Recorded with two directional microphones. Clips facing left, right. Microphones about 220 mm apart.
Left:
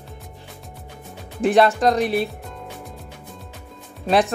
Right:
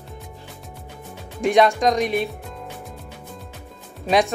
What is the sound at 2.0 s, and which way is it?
Speech, 35° left (ahead or behind).